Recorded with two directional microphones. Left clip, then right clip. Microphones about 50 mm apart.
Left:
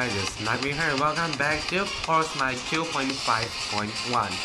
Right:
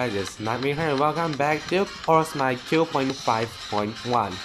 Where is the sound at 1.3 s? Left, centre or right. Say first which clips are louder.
Right 2 dB; left.